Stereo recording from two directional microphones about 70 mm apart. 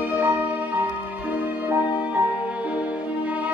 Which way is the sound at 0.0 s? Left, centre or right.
Right.